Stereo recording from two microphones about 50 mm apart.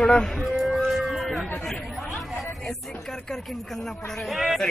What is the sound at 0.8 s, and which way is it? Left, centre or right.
Music, centre.